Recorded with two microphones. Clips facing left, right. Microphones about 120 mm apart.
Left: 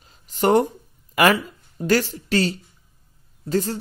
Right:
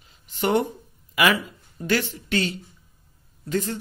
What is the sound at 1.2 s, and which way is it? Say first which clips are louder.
Speech: left 4 dB; 45° left (ahead or behind).